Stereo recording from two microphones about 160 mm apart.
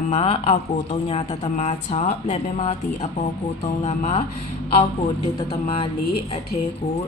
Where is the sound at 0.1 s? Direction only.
40° left (ahead or behind).